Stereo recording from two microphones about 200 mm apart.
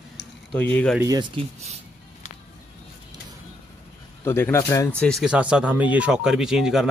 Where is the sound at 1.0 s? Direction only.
20° right (ahead or behind).